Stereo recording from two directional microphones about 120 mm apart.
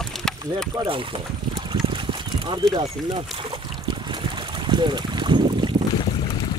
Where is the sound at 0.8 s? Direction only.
50° right (ahead or behind).